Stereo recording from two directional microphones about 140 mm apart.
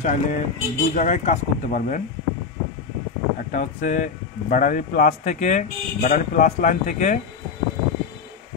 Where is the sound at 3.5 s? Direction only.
60° left (ahead or behind).